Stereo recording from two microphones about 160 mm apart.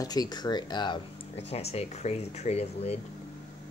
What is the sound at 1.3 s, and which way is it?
Speech, 40° left (ahead or behind).